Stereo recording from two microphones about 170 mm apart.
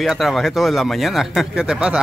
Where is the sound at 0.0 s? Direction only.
Centre (ahead or behind).